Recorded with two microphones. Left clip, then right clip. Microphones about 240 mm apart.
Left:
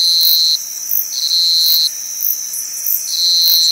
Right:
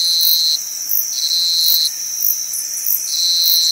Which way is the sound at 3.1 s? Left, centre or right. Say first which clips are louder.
Left 3 dB; left.